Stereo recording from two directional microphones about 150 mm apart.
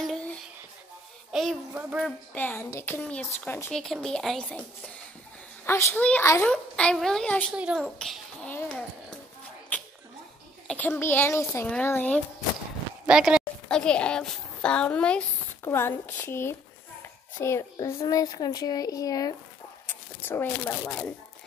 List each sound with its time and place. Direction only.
0.0 s a sound: 5° left (ahead or behind)
1.3 s speech: centre (ahead or behind)
2.0 s a child's voice: 10° left (ahead or behind)
3.7 s speech: 5° left (ahead or behind)
5.7 s a child's voice: 20° left (ahead or behind)
7.5 s speech: 10° right (ahead or behind)
7.8 s a child's voice: 5° left (ahead or behind)
10.7 s a child's voice: 15° left (ahead or behind)
13.0 s speech: 5° right (ahead or behind)
13.7 s a child's voice: 5° left (ahead or behind)